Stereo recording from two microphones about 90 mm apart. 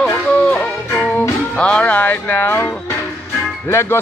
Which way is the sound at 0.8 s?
20° left (ahead or behind).